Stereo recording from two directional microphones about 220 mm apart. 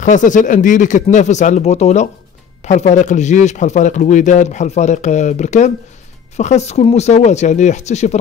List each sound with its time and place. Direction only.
0.0 s speech: 35° left (ahead or behind)